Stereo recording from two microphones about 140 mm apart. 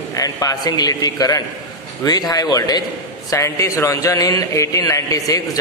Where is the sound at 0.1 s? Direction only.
25° left (ahead or behind).